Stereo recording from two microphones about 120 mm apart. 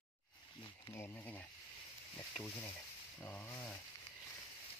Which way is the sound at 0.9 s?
20° left (ahead or behind).